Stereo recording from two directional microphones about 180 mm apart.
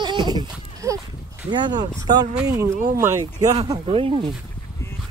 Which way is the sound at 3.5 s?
25° right (ahead or behind).